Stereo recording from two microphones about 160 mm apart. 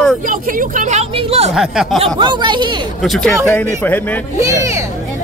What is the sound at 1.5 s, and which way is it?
Speech, 5° right (ahead or behind).